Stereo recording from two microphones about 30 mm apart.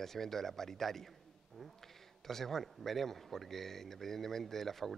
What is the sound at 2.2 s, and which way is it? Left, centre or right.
A man's voice, centre.